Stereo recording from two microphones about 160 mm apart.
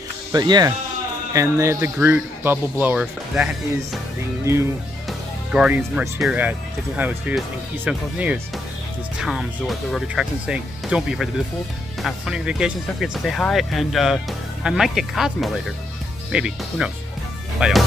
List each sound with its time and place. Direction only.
0.3 s speech: 25° right (ahead or behind); by 3.4 s 10° right (ahead or behind)
5.0 s speech: 5° right (ahead or behind)